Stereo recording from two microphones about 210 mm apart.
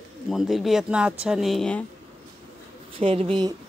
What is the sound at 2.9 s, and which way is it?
Speech, 25° right (ahead or behind).